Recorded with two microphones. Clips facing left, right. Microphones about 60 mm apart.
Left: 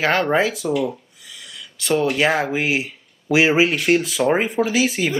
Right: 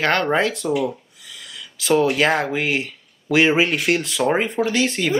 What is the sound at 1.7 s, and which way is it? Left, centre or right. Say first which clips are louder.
Speech: right 2 dB; centre.